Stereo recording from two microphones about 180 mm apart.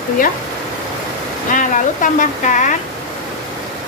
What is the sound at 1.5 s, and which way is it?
Speech, 45° left (ahead or behind).